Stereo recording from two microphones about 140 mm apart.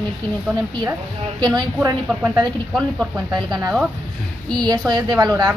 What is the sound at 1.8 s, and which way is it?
Speech, 20° right (ahead or behind).